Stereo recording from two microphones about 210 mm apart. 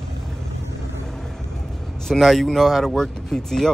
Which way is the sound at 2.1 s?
Centre (ahead or behind).